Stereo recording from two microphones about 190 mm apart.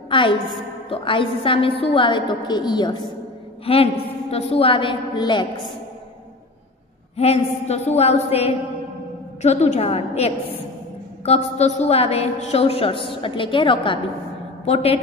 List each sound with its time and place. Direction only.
0.1 s a woman's voice: 25° left (ahead or behind)
7.2 s a woman's voice: 35° left (ahead or behind)